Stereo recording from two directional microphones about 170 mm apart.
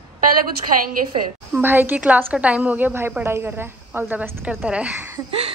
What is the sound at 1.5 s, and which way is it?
A woman's voice, 10° right (ahead or behind).